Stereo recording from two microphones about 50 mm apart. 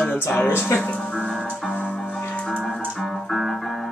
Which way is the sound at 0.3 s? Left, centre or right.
Left.